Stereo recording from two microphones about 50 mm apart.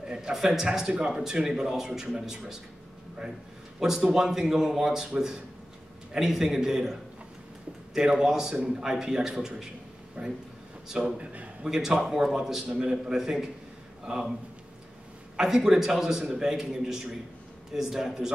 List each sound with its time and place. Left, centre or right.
0.0 s speech: centre
4.0 s speech: centre
10.2 s a man's voice: right
11.7 s speech: centre
15.3 s speech: centre